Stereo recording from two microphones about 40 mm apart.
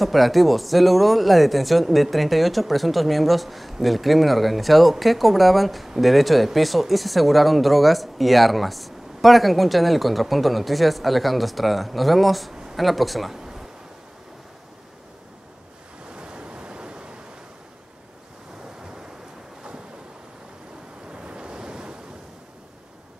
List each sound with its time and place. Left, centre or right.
0.0 s speech: centre
13.4 s a sound: centre
16.1 s waves: right
21.1 s waves: right